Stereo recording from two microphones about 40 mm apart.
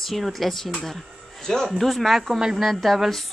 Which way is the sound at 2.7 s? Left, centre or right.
Centre.